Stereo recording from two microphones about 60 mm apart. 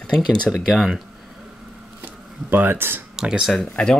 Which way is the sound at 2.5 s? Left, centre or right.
Right.